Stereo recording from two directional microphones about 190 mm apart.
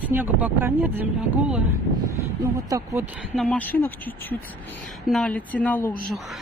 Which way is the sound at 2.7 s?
15° right (ahead or behind).